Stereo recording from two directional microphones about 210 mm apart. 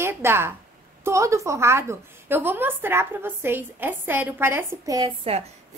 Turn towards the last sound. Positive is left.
turn(degrees=-25)  # may be behind; listen again after turning